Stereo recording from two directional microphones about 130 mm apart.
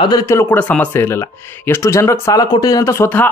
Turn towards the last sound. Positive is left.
turn(degrees=15)  # may be behind; listen again after turning